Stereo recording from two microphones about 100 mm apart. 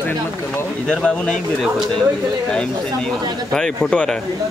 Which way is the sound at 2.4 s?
10° left (ahead or behind).